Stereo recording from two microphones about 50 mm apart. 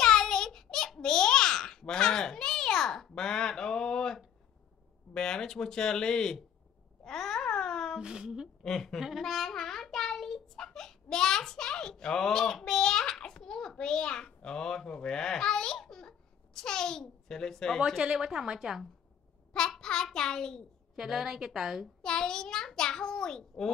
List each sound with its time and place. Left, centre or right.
0.0 s babbling: centre
5.1 s speech: centre
7.1 s a sound: centre
8.0 s a woman's voice: centre
8.6 s a child's voice: centre
9.2 s child singing: centre
12.5 s a sound: centre
17.7 s a woman's voice: centre
19.8 s a sound: centre
20.9 s a woman's voice: centre
22.0 s a child's voice: centre